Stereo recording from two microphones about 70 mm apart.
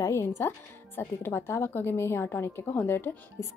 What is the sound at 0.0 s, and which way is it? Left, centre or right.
Speech, left.